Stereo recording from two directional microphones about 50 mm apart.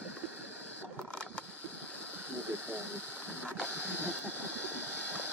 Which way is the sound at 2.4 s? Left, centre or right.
Right.